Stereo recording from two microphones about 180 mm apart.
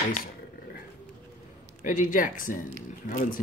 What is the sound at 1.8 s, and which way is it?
Speech, 45° left (ahead or behind).